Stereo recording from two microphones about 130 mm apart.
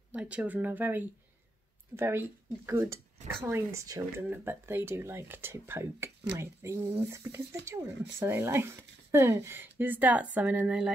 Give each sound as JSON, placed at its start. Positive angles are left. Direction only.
{"t": 0.1, "sound": "a woman's voice", "side_deg": -10}